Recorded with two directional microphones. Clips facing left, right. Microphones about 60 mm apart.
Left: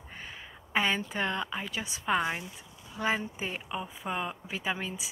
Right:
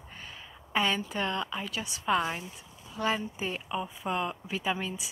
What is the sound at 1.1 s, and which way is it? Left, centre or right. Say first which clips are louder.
Speech: even; left.